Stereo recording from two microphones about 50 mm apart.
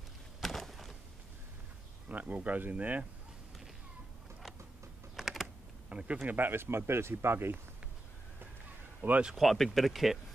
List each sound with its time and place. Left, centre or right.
0.4 s a sound: centre
2.0 s speech: right
5.1 s typing: centre
5.9 s a sound: right
6.2 s speech: right
9.3 s speech: centre